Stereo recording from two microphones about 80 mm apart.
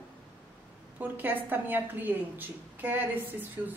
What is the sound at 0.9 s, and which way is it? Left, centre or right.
A woman's voice, right.